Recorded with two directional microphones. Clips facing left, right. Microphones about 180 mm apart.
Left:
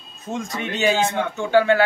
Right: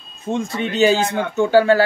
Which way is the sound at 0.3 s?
30° right (ahead or behind).